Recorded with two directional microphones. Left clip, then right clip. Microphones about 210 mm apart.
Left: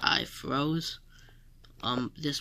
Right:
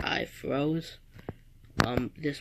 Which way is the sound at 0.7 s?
75° left (ahead or behind).